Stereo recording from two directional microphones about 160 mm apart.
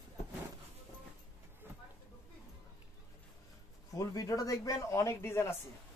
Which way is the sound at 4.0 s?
20° left (ahead or behind).